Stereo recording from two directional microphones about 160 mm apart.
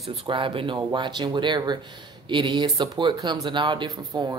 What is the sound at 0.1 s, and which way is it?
Speech, 30° right (ahead or behind).